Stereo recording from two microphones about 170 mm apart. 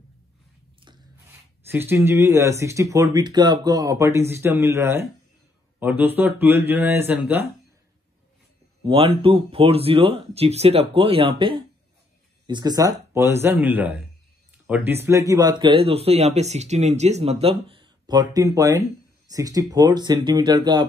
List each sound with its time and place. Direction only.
1.7 s speech: 15° right (ahead or behind)
8.8 s speech: 30° right (ahead or behind)